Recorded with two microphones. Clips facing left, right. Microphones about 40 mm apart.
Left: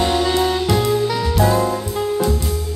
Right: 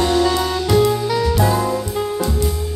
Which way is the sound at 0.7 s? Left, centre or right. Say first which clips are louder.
Right 2 dB; centre.